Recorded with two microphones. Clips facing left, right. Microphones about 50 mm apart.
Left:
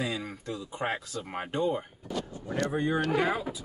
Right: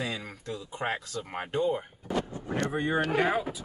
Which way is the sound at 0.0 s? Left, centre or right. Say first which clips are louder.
Left 2 dB; centre.